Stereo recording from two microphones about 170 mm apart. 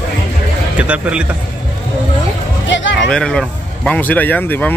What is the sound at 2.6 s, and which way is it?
Speech, 90° left.